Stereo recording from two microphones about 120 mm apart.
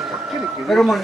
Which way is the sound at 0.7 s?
Centre (ahead or behind).